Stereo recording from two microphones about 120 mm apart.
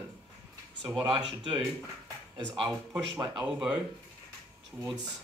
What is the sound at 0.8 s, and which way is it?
Speech, 5° right (ahead or behind).